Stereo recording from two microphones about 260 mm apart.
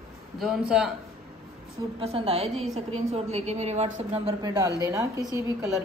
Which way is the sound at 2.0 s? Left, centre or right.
Right.